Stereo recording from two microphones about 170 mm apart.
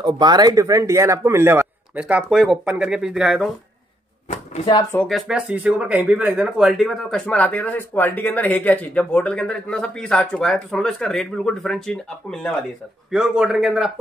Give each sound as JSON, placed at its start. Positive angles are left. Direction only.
{"t": 0.0, "sound": "speech", "side_deg": -25}
{"t": 4.9, "sound": "speech", "side_deg": 0}